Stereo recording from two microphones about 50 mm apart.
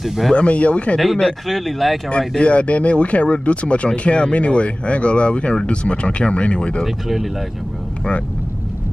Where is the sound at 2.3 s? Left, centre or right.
Left.